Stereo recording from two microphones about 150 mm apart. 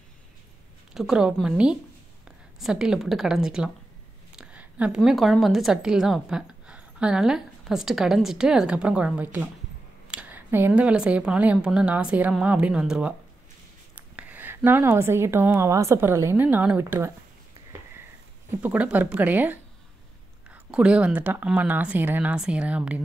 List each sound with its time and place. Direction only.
0.9 s a woman's voice: 5° right (ahead or behind)
2.6 s a woman's voice: 5° right (ahead or behind)
18.6 s speech: 10° right (ahead or behind)